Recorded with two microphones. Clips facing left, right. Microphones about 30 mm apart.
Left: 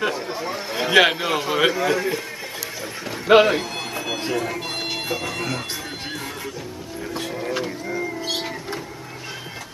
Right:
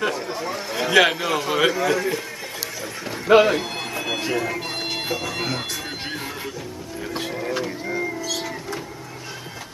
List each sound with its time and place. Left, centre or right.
0.0 s a sound: centre
1.6 s a man's voice: centre
3.3 s a man's voice: centre
3.7 s bagpipes: centre
4.3 s music: centre
7.2 s wild animals: centre
7.8 s music: centre
8.2 s music: left